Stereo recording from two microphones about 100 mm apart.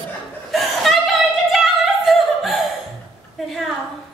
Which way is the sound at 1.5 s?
Centre (ahead or behind).